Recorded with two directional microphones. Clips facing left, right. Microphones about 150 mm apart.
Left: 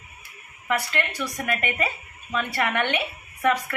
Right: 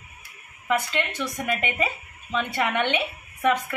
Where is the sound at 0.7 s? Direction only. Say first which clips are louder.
Right 1 dB; 20° right (ahead or behind).